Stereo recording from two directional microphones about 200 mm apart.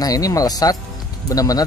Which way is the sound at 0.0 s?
20° left (ahead or behind).